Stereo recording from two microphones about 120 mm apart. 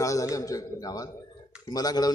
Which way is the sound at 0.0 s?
25° left (ahead or behind).